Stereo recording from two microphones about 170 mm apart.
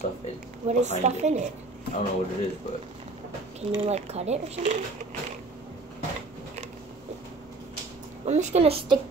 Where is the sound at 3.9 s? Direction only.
40° right (ahead or behind).